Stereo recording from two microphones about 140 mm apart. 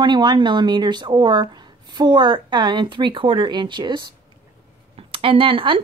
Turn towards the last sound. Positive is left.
turn(degrees=-40)  # may be behind; listen again after turning